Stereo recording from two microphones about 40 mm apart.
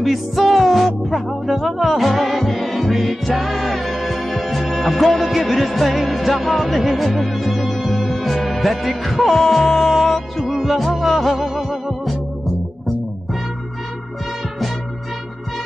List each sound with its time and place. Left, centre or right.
0.0 s music: centre